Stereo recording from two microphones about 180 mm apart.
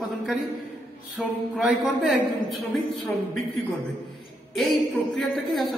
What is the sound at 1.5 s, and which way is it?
A woman's voice, 5° right (ahead or behind).